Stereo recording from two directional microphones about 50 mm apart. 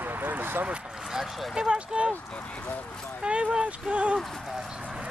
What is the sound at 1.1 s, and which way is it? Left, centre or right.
Speech, centre.